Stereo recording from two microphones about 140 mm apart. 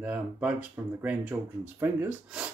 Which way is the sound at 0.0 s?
10° right (ahead or behind).